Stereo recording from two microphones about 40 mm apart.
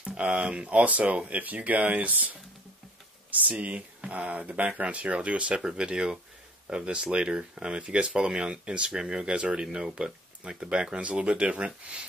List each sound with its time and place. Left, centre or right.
0.1 s speech: right
0.7 s speech: right